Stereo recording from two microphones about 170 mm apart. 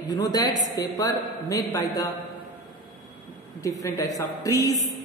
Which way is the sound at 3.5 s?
20° left (ahead or behind).